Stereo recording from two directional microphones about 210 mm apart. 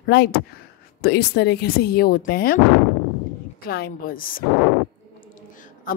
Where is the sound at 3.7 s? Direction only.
45° left (ahead or behind).